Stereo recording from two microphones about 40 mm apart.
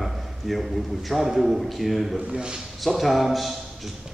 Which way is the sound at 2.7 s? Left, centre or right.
Centre.